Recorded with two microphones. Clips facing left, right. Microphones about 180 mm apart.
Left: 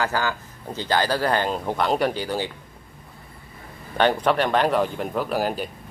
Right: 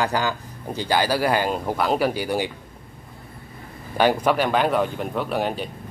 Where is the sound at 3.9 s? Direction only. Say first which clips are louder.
Right 1 dB; 10° right (ahead or behind).